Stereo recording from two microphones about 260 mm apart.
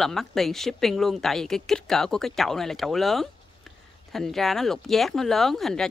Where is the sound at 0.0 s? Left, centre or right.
Centre.